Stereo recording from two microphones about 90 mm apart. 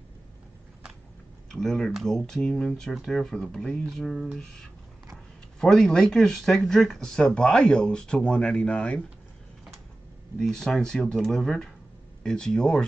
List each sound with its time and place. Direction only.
1.5 s speech: 5° left (ahead or behind)
10.4 s speech: 5° left (ahead or behind)